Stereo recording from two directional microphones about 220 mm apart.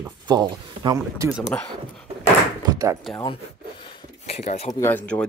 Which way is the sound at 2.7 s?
15° right (ahead or behind).